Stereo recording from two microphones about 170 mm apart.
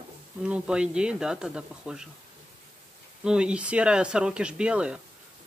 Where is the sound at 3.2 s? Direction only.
5° right (ahead or behind).